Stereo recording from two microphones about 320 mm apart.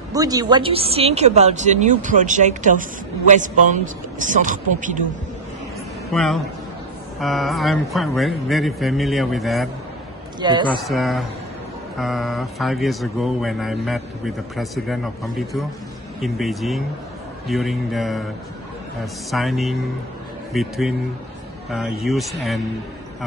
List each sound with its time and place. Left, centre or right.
0.1 s speech: centre
6.1 s speech: centre
10.4 s a woman's voice: centre
10.8 s speech: centre
19.3 s speech: centre